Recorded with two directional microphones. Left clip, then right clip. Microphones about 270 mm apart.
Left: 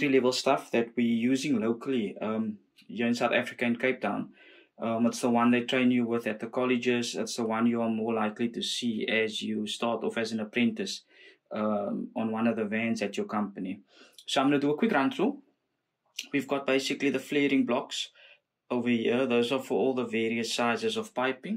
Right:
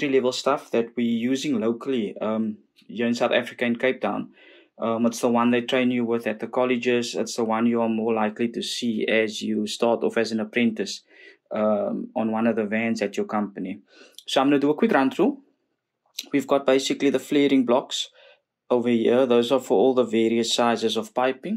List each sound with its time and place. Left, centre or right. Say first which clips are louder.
0.0 s speech: right 3 dB; centre